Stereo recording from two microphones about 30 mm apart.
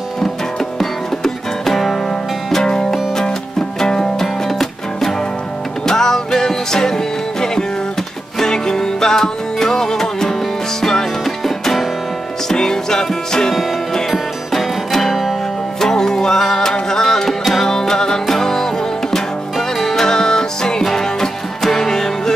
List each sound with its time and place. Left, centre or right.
0.6 s music: centre
2.6 s music: left
5.9 s music: centre
12.4 s music: centre
14.5 s music: centre
15.8 s music: centre
20.0 s music: left